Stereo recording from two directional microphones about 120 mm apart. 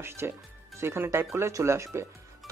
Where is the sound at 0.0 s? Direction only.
20° right (ahead or behind).